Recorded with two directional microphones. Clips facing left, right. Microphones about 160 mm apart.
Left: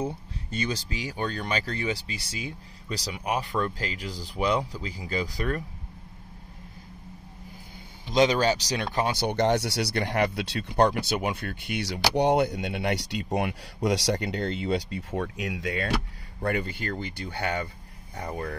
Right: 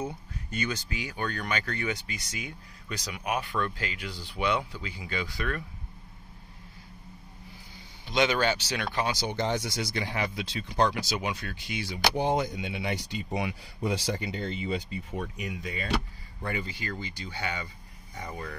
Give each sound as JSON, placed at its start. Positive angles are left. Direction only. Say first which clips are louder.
{"t": 0.0, "sound": "speech", "louder": "left 4 dB", "side_deg": 30}
{"t": 8.1, "sound": "speech", "louder": "left 4 dB", "side_deg": 35}
{"t": 9.2, "sound": "speech", "louder": "left 6 dB", "side_deg": 65}
{"t": 11.0, "sound": "speech", "louder": "left 4 dB", "side_deg": 60}
{"t": 16.4, "sound": "speech", "louder": "left 5 dB", "side_deg": 60}